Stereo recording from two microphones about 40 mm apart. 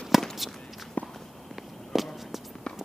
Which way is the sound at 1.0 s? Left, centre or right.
Left.